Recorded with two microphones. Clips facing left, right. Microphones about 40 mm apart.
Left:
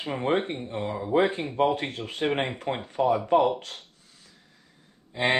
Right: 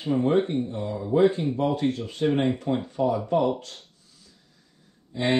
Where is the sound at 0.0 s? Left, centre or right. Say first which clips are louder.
Right 4 dB; left.